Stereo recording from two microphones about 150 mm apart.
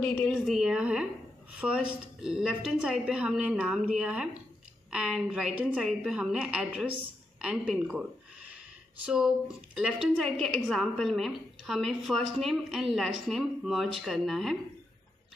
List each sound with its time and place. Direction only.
0.0 s a woman's voice: 10° left (ahead or behind)
0.3 s a woman's voice: 5° right (ahead or behind)
9.0 s a woman's voice: 5° right (ahead or behind)